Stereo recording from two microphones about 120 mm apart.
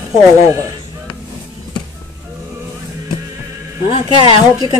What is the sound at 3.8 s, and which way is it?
Speech, 45° left (ahead or behind).